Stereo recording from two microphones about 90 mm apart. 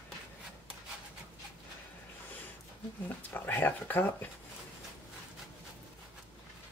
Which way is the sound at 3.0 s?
20° left (ahead or behind).